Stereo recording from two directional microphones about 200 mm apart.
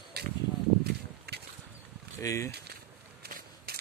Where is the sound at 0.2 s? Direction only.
55° right (ahead or behind).